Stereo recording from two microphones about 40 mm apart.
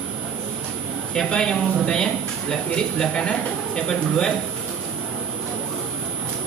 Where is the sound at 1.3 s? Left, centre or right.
Centre.